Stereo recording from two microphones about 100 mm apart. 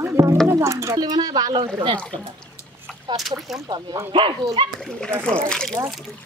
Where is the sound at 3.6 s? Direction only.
45° right (ahead or behind).